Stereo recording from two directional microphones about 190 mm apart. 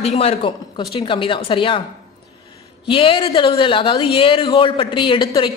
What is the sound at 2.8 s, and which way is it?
Speech, 25° left (ahead or behind).